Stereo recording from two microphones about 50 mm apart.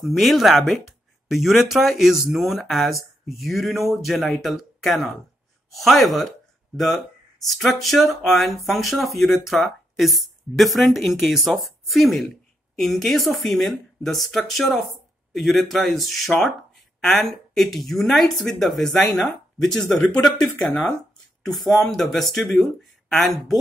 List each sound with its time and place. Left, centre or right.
0.0 s speech: centre
21.5 s speech: centre